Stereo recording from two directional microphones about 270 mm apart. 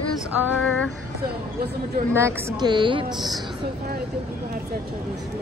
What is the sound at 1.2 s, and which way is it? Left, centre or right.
Speech, right.